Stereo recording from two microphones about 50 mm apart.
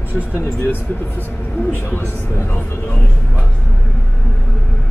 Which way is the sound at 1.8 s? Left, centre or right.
Left.